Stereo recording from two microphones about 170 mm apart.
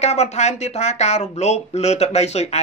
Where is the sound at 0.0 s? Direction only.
40° left (ahead or behind).